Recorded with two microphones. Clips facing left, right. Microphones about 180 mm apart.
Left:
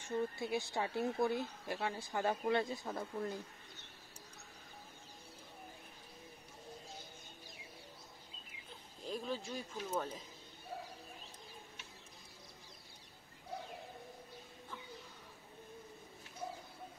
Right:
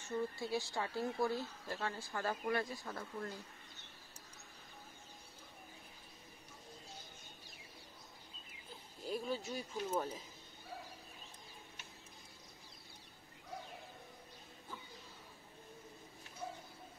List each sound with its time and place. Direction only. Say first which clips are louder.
0.0 s speech: left 2 dB; 20° left (ahead or behind)
9.0 s speech: right 1 dB; 5° right (ahead or behind)